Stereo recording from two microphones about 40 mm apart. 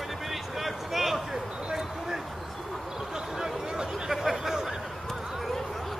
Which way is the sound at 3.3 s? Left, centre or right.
Centre.